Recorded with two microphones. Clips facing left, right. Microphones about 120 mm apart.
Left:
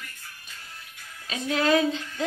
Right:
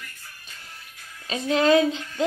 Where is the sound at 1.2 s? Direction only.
30° right (ahead or behind).